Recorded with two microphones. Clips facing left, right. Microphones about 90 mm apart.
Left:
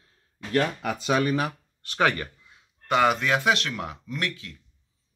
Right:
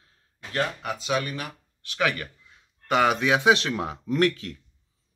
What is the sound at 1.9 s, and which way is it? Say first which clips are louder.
Speech: left 3 dB; 35° left (ahead or behind).